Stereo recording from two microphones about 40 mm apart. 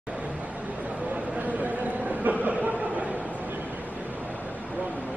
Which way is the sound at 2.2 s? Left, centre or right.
Right.